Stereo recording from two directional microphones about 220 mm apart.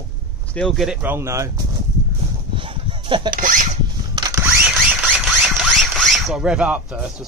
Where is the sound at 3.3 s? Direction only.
35° right (ahead or behind).